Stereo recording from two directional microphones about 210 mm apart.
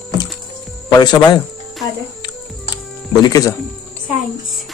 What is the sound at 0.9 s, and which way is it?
Speech, 20° left (ahead or behind).